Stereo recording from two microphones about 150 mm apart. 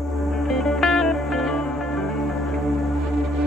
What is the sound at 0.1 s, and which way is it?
Music, centre (ahead or behind).